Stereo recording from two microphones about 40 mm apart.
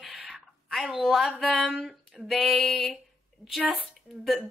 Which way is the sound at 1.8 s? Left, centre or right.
Centre.